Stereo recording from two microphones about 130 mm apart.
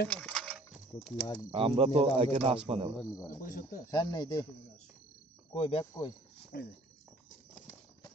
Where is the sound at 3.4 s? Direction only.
90° left.